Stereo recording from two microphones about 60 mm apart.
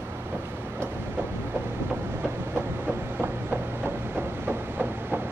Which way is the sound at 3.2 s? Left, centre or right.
Right.